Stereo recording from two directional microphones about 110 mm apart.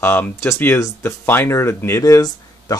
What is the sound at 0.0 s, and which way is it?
Speech, 20° left (ahead or behind).